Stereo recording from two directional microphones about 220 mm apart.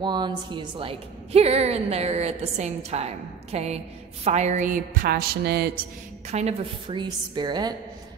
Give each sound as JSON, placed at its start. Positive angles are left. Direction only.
{"t": 0.0, "sound": "a woman's voice", "side_deg": -20}
{"t": 6.3, "sound": "a woman's voice", "side_deg": -25}